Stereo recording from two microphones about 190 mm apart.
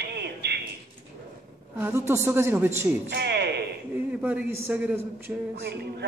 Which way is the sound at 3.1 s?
60° right (ahead or behind).